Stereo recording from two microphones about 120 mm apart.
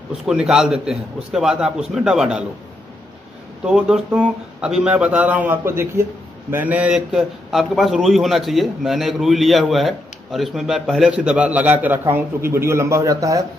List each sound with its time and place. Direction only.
0.2 s a man's voice: 5° right (ahead or behind)
3.6 s a man's voice: 5° right (ahead or behind); by 13.5 s 30° right (ahead or behind)